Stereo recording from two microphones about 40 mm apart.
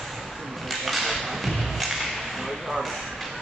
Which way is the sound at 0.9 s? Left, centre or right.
Centre.